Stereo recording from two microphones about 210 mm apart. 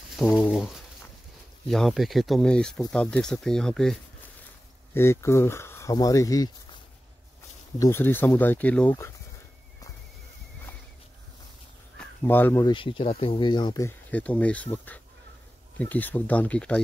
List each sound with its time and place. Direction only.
0.5 s speech: centre (ahead or behind)
4.9 s speech: 15° left (ahead or behind)
7.8 s speech: 10° left (ahead or behind)
12.0 s speech: 10° left (ahead or behind)
12.7 s speech: 25° left (ahead or behind); by 16.8 s 5° left (ahead or behind)